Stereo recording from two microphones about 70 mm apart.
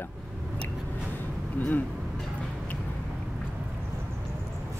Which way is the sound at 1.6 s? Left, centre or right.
Left.